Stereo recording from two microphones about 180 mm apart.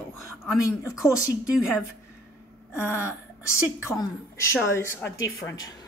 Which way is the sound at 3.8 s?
15° left (ahead or behind).